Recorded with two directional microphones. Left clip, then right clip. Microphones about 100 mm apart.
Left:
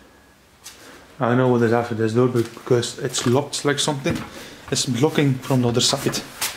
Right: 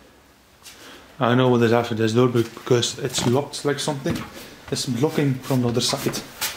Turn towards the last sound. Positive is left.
turn(degrees=15)  # may be behind; listen again after turning